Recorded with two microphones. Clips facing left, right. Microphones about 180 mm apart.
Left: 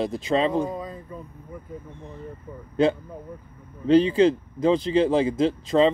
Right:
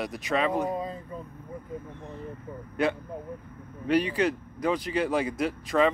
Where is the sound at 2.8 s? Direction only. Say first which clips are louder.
Left 6 dB; 25° left (ahead or behind).